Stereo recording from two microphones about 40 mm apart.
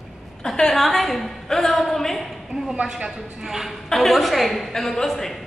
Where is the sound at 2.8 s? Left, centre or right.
Centre.